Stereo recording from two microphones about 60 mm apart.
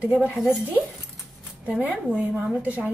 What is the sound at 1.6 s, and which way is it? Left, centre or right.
A woman's voice, right.